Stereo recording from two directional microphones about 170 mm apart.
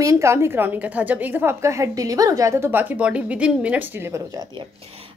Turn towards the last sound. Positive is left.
turn(degrees=-20)  # may be behind; listen again after turning